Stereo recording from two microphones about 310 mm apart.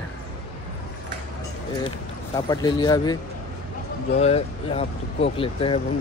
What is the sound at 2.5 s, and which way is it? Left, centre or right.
Speech, centre.